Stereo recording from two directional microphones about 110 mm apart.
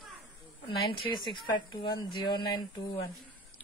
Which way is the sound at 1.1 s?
45° left (ahead or behind).